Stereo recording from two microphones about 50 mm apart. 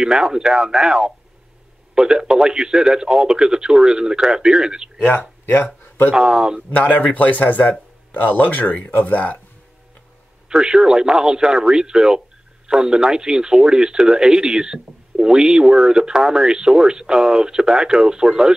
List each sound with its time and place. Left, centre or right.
0.0 s speech: centre
4.9 s speech: left
5.4 s speech: left
6.1 s speech: centre
6.7 s speech: left
10.5 s speech: centre